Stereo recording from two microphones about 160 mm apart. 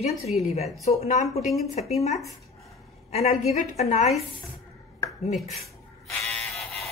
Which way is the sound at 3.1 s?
40° left (ahead or behind).